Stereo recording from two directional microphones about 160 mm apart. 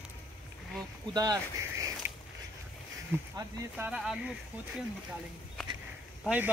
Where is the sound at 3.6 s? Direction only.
15° right (ahead or behind).